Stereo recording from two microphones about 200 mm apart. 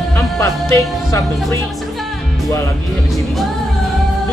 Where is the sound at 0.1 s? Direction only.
15° left (ahead or behind).